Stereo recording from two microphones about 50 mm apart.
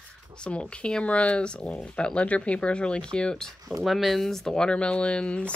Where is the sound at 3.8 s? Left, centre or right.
Centre; by 5.6 s left.